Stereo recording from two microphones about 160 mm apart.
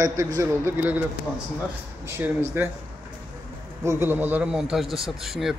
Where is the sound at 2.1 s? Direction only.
15° right (ahead or behind).